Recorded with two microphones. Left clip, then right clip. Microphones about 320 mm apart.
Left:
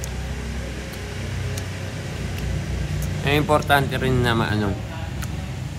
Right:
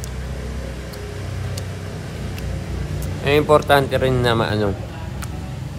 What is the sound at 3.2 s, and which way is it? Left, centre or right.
Speech, centre.